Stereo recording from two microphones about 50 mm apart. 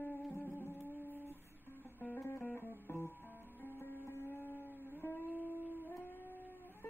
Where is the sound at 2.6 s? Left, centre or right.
Left.